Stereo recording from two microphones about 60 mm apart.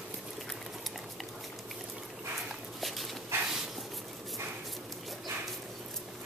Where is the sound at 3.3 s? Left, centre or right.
Right.